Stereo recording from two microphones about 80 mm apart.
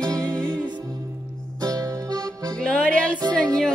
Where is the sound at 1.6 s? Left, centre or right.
Right.